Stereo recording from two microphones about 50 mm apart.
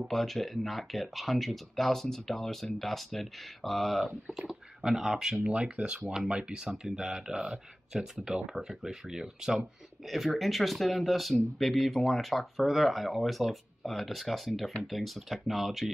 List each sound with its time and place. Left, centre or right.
0.1 s speech: centre
4.3 s speech: centre
5.6 s speech: right; by 15.9 s centre